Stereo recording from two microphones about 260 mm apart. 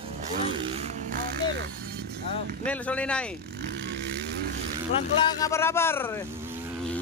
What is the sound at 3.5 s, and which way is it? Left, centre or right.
Vehicle, right.